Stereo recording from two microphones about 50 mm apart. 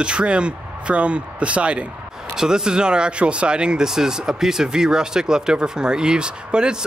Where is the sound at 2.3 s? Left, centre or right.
Centre.